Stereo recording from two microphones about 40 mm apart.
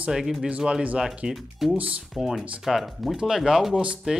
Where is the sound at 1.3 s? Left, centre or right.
Centre.